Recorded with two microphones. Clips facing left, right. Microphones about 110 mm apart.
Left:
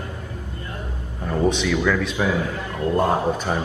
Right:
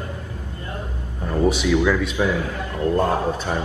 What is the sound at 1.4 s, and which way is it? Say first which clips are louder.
Speech: right 2 dB; 10° right (ahead or behind).